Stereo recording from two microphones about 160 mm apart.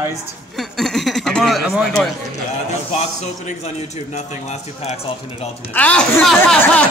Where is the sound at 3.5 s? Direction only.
45° left (ahead or behind).